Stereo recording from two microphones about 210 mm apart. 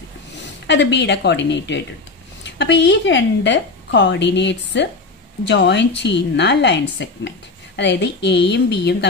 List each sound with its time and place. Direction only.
0.7 s a woman's voice: 55° left (ahead or behind)